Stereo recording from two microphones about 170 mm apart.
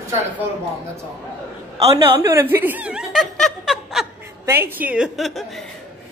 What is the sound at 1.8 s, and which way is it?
Speech, 35° right (ahead or behind).